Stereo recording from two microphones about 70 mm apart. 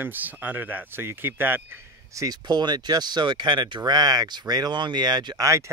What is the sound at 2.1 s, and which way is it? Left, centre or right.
Speech, right.